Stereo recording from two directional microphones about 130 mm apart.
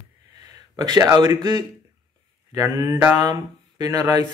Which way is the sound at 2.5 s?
25° right (ahead or behind).